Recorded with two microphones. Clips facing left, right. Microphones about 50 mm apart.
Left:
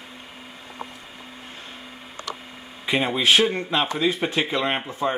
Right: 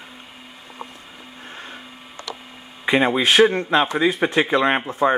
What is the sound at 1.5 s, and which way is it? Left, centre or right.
Blender, centre.